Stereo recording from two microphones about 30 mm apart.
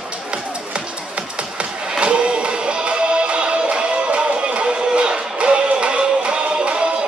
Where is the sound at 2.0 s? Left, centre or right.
Right.